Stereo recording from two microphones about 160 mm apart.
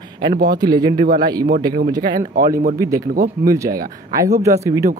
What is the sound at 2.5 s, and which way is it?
Speech, 55° right (ahead or behind).